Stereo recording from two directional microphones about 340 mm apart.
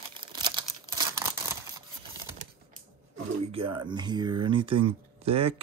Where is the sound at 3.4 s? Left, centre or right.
Centre.